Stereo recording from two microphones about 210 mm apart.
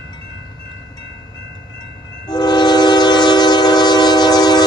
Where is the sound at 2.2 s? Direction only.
20° left (ahead or behind).